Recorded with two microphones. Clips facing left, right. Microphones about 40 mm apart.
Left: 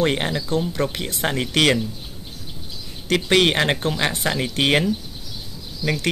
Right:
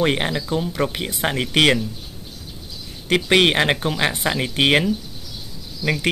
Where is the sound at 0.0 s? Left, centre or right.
Centre.